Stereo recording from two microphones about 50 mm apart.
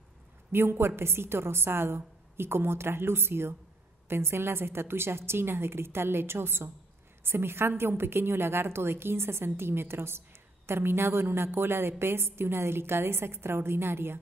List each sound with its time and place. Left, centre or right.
0.7 s a woman's voice: right